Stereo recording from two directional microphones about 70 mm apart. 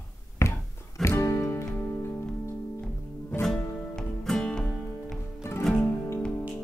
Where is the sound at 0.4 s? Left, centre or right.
Left.